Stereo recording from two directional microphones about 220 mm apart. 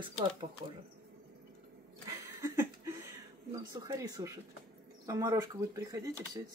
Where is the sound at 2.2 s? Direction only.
15° right (ahead or behind).